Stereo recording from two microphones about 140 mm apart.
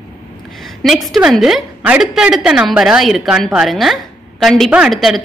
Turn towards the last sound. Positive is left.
turn(degrees=0)  # may be behind; listen again after turning